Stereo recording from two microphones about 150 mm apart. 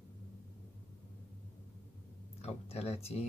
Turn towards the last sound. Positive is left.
turn(degrees=45)  # may be behind; listen again after turning